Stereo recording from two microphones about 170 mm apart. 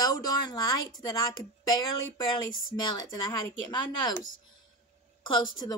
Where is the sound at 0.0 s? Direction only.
20° left (ahead or behind).